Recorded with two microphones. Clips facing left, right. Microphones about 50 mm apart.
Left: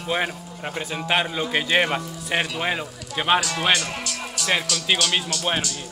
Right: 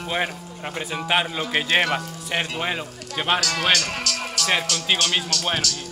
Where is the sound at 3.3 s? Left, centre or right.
Right.